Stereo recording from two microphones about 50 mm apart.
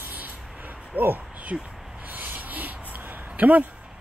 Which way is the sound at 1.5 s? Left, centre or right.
Centre.